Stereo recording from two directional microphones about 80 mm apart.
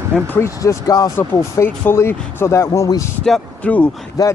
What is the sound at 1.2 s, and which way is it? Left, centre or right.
Speech, left.